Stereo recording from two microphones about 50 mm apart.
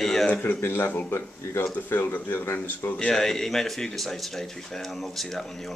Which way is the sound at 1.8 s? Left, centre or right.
Left.